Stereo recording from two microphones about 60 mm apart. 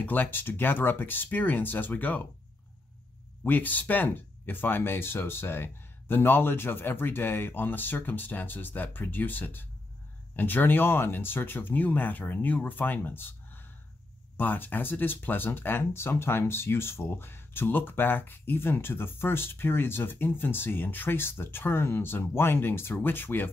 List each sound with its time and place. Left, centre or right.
0.0 s speech: left
3.4 s speech: left